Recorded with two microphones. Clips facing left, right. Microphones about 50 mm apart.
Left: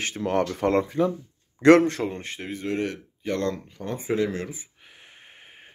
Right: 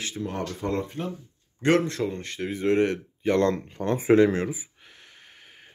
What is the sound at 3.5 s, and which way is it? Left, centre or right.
Speech, right.